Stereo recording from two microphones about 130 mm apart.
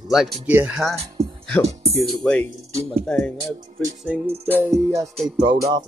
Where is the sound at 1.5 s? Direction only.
5° left (ahead or behind).